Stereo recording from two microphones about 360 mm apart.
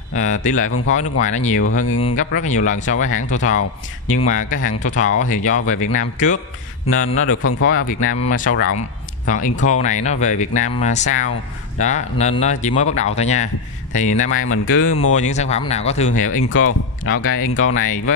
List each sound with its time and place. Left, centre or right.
0.1 s speech: centre
1.7 s speech: left
2.0 s speech: centre
7.2 s speech: left
8.7 s speech: left
14.3 s speech: left
15.1 s speech: centre
16.3 s speech: left